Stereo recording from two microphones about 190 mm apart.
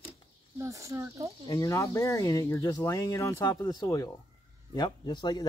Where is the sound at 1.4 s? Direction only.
15° left (ahead or behind).